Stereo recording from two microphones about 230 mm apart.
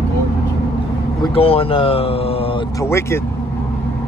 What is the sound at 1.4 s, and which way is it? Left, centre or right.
Speech, left.